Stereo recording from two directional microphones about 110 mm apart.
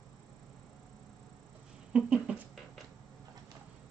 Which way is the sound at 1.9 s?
10° right (ahead or behind).